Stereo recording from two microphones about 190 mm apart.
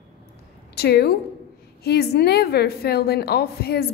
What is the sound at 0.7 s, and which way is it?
A woman's voice, 55° left (ahead or behind).